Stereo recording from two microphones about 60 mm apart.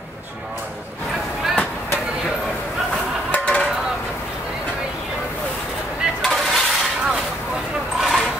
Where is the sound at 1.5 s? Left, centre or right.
Left.